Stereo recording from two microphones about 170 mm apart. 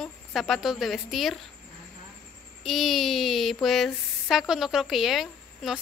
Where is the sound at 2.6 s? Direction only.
Centre (ahead or behind).